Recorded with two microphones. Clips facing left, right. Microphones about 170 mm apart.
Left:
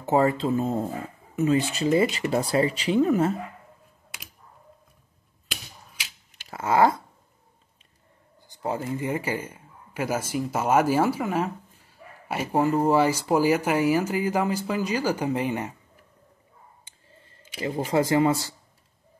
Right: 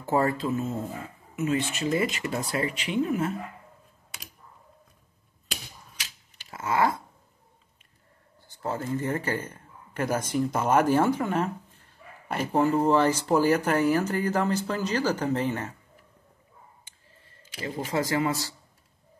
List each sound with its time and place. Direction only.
0.0 s speech: 20° left (ahead or behind); by 3.3 s 35° left (ahead or behind)
6.5 s a sound: 30° left (ahead or behind)
8.4 s speech: 15° left (ahead or behind)
17.6 s speech: 30° left (ahead or behind)